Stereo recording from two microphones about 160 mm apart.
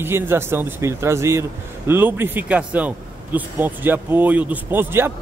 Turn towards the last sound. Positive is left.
turn(degrees=-15)  # may be behind; listen again after turning